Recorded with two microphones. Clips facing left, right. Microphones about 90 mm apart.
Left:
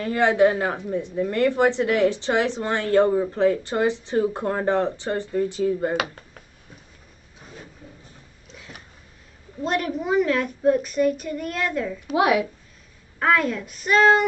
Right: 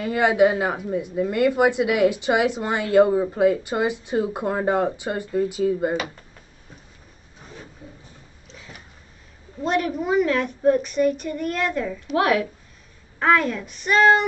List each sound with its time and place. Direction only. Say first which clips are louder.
0.0 s speech: even; 10° right (ahead or behind)
8.5 s a sound: even; centre (ahead or behind)
9.6 s a woman's voice: right 2 dB; centre (ahead or behind)
12.2 s speech: left 1 dB; 15° left (ahead or behind)
13.2 s a woman's voice: right 1 dB; centre (ahead or behind)